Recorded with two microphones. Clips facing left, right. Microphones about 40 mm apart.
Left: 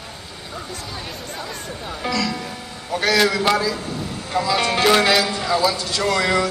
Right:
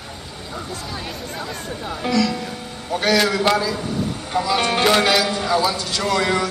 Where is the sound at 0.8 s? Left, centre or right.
Centre.